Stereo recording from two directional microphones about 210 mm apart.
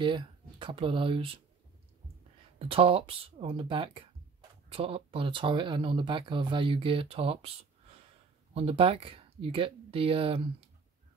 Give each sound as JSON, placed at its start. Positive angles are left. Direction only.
{"t": 0.0, "sound": "speech", "side_deg": -25}
{"t": 2.7, "sound": "speech", "side_deg": -25}